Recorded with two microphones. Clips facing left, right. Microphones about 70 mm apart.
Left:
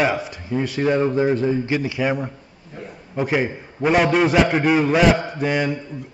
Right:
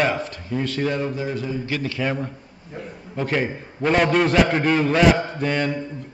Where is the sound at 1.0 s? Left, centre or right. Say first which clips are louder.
Left 7 dB; left.